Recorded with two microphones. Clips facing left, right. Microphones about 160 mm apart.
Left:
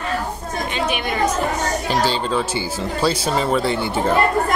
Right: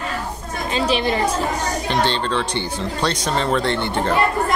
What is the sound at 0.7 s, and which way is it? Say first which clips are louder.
Speech: right 4 dB; 30° right (ahead or behind).